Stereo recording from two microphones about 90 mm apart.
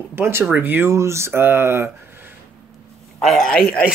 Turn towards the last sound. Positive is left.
turn(degrees=5)  # may be behind; listen again after turning